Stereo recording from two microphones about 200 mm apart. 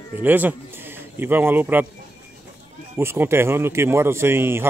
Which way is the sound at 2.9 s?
10° right (ahead or behind).